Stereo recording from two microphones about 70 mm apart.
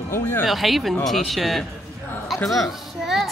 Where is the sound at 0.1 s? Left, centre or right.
Left.